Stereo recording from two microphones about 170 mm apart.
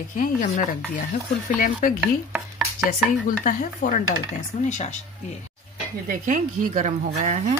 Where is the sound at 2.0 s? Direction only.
10° right (ahead or behind).